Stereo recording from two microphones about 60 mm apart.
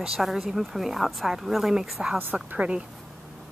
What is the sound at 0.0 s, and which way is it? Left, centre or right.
Speech, centre.